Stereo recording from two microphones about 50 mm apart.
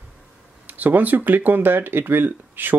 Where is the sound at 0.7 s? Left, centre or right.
Right.